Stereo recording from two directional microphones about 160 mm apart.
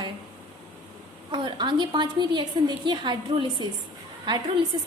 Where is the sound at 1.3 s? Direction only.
30° right (ahead or behind).